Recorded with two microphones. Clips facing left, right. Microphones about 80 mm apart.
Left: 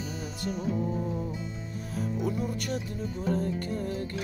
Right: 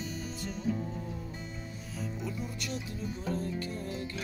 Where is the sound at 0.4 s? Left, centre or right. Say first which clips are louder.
Left 3 dB; left.